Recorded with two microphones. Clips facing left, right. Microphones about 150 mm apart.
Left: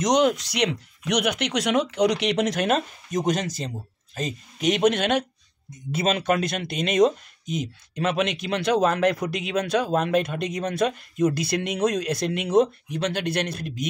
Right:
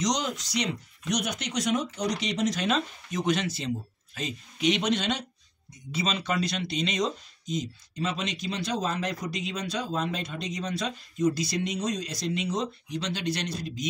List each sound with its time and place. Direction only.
0.0 s speech: 60° left (ahead or behind)